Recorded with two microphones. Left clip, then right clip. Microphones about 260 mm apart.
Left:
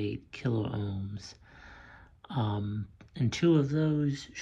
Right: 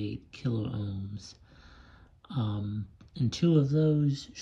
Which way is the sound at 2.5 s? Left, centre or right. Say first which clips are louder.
Left 2 dB; centre.